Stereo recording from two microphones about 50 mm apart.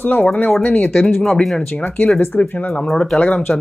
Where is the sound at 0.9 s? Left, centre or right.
Centre.